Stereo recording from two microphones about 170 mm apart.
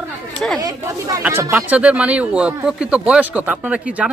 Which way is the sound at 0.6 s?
20° right (ahead or behind).